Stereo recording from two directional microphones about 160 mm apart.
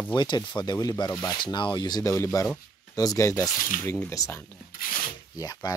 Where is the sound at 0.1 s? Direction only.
30° left (ahead or behind).